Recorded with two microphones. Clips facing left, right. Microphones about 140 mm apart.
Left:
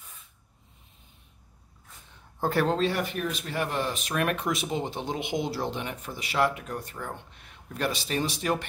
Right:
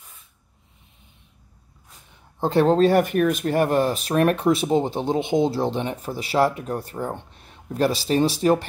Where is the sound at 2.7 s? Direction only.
45° right (ahead or behind).